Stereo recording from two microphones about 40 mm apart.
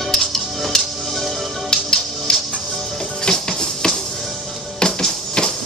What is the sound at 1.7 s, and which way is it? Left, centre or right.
Music, left.